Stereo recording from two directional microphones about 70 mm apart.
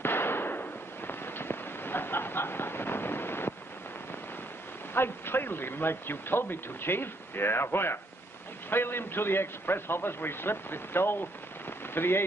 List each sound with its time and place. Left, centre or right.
0.0 s firecracker: left
4.9 s a man's voice: left